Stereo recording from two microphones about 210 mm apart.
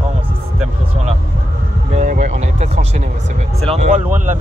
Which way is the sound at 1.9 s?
35° right (ahead or behind).